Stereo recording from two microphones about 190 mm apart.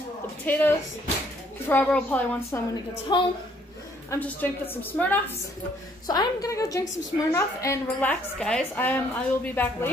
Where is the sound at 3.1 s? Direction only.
25° left (ahead or behind).